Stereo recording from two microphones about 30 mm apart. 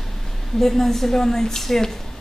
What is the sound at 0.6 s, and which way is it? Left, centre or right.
A woman's voice, centre.